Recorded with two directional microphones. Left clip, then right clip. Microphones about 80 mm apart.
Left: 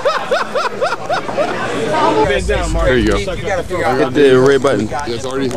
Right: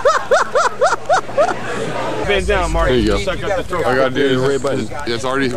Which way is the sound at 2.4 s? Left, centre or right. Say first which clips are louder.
Right 1 dB; right.